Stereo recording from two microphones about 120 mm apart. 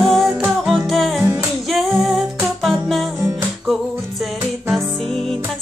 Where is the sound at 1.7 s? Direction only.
Centre (ahead or behind).